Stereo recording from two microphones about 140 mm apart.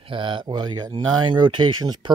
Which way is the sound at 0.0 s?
35° right (ahead or behind).